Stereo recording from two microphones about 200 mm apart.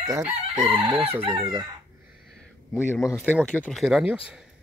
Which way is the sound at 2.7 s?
15° left (ahead or behind).